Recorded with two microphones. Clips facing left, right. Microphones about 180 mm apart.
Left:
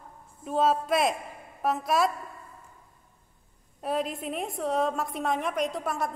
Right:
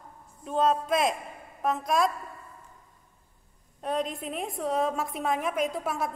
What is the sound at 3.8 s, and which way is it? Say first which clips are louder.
A woman's voice: left 1 dB; 5° left (ahead or behind).